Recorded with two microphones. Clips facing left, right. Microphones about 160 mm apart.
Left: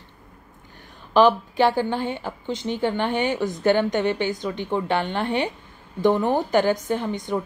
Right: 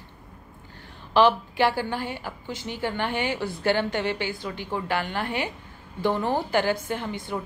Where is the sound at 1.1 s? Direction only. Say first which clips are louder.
Left 3 dB; 15° left (ahead or behind).